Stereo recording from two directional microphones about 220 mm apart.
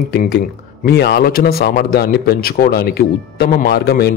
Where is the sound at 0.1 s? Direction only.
45° left (ahead or behind).